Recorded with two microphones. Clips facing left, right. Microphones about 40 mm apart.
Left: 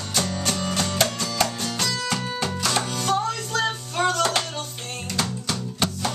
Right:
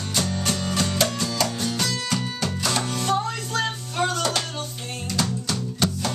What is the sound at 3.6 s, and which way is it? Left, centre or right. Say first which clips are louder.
Music: left 1 dB; centre.